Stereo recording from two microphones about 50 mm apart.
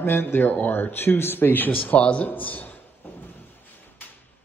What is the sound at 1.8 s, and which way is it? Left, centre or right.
Speech, left.